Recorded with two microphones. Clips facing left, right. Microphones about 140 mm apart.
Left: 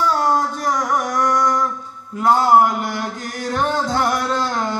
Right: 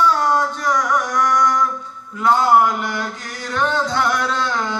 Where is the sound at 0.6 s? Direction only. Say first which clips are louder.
Right 1 dB; 45° left (ahead or behind).